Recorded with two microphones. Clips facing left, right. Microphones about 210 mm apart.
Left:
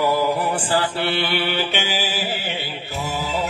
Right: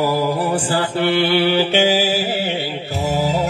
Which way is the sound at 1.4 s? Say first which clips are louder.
Right 8 dB; 45° right (ahead or behind).